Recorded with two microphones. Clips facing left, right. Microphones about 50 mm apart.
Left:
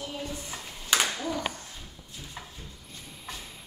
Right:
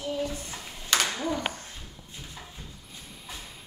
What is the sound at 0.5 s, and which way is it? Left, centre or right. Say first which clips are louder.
Clapping: left 2 dB; centre.